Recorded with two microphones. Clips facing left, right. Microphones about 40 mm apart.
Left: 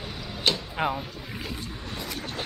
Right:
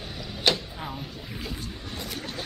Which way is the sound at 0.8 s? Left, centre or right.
Left.